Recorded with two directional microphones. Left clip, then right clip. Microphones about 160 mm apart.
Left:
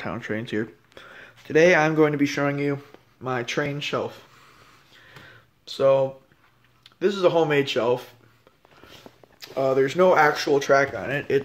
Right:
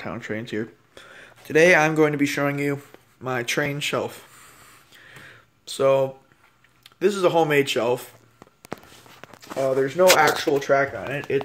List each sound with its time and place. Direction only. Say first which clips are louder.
0.0 s speech: left 1 dB; 10° left (ahead or behind); by 4.3 s 10° right (ahead or behind)
5.1 s a sound: right 2 dB; 15° right (ahead or behind)
6.8 s speech: right 1 dB; 10° right (ahead or behind)
9.6 s speech: even; 25° left (ahead or behind)
10.1 s speech: even; 5° left (ahead or behind)